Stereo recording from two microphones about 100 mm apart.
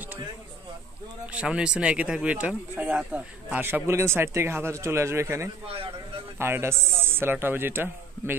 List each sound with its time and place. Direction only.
1.2 s a man's voice: 10° right (ahead or behind)